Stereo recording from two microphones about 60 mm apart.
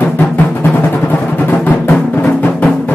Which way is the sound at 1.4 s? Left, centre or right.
Left.